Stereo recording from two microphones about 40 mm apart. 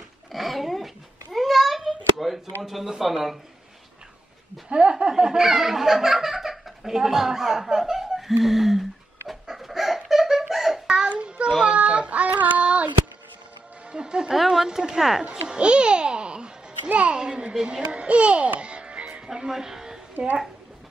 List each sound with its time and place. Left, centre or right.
0.3 s babbling: centre
1.9 s a sound: centre
2.6 s speech: centre
4.6 s speech: right; by 8.8 s centre
9.3 s chicken: centre
10.5 s a sound: centre
11.1 s child singing: right
13.9 s a woman's voice: right
14.3 s speech: centre
15.4 s music: right
17.1 s a woman's voice: right
17.9 s a child's voice: right
18.6 s music: right
19.2 s speech: centre